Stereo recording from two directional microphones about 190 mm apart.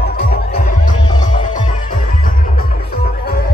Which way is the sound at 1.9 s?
45° left (ahead or behind).